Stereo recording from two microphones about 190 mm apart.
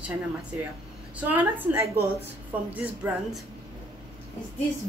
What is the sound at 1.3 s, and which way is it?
Speech, 10° right (ahead or behind).